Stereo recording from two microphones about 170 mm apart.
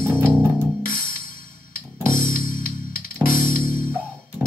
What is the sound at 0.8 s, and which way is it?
Music, 60° left (ahead or behind).